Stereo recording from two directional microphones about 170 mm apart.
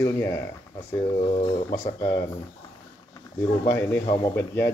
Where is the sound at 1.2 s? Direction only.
35° left (ahead or behind).